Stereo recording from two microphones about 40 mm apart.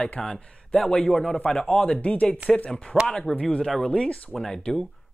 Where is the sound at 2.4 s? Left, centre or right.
Right.